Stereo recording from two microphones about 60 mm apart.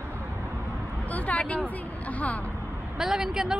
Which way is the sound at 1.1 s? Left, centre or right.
Left.